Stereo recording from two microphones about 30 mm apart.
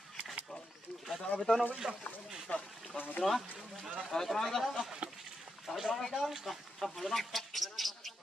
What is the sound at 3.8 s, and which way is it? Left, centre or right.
Speech, centre.